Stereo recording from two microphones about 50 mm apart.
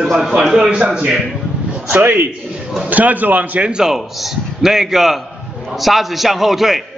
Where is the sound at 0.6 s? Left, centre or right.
Right.